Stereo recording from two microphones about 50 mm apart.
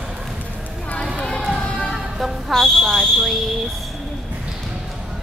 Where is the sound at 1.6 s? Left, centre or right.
Centre.